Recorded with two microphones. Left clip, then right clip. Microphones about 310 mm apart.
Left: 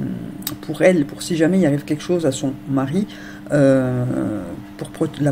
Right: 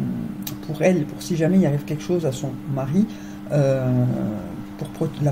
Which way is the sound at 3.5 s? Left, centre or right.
Left.